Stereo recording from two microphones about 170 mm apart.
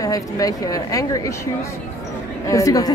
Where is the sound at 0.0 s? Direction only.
20° left (ahead or behind).